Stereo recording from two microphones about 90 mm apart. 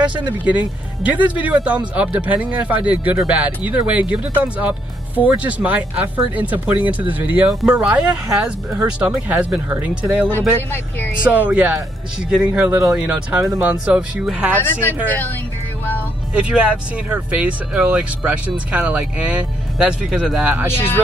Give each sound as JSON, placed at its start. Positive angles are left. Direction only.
{"t": 0.0, "sound": "speech", "side_deg": -60}
{"t": 0.5, "sound": "speech", "side_deg": -15}
{"t": 10.7, "sound": "speech", "side_deg": 20}
{"t": 11.2, "sound": "speech", "side_deg": -15}
{"t": 14.6, "sound": "speech", "side_deg": 25}
{"t": 16.3, "sound": "speech", "side_deg": -15}
{"t": 20.4, "sound": "speech", "side_deg": -15}